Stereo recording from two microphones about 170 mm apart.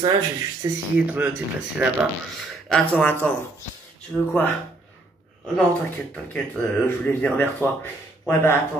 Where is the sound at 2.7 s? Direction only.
5° left (ahead or behind).